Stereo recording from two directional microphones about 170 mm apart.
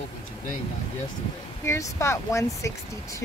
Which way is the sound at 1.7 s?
15° left (ahead or behind).